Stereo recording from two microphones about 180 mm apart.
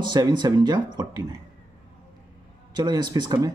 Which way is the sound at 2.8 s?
25° right (ahead or behind).